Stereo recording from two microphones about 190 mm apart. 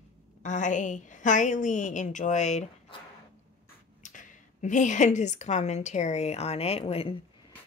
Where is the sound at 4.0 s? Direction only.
45° left (ahead or behind).